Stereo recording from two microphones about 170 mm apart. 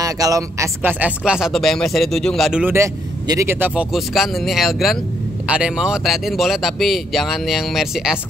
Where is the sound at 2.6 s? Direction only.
15° right (ahead or behind).